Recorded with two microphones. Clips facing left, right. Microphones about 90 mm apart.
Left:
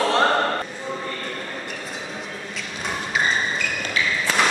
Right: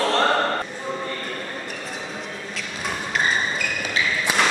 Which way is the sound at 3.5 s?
5° right (ahead or behind).